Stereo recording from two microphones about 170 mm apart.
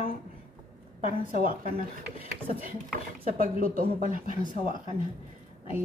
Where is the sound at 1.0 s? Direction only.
55° right (ahead or behind).